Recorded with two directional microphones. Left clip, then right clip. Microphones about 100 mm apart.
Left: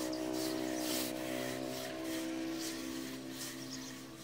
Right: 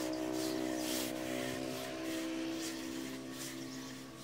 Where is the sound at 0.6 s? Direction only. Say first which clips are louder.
Even; 15° right (ahead or behind).